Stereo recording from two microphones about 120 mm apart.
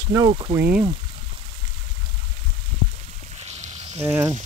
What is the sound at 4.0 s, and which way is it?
Speech, 20° right (ahead or behind).